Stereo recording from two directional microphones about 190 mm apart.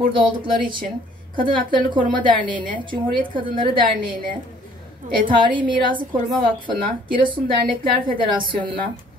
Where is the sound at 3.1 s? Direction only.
25° right (ahead or behind).